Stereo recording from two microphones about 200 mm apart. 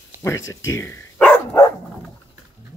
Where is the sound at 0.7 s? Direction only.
15° left (ahead or behind).